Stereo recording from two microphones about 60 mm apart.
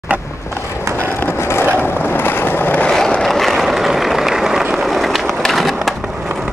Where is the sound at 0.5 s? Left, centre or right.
Left.